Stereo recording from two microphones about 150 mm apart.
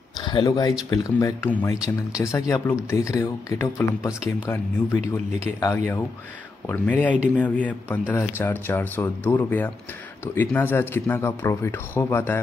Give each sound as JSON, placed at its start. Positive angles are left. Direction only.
{"t": 0.2, "sound": "speech", "side_deg": 30}
{"t": 5.4, "sound": "speech", "side_deg": 20}
{"t": 6.7, "sound": "speech", "side_deg": 10}